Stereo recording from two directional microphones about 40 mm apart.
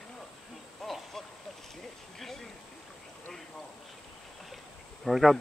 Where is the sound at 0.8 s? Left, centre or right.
Centre.